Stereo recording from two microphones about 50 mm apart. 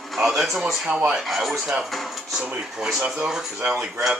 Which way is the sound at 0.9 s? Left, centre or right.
Right.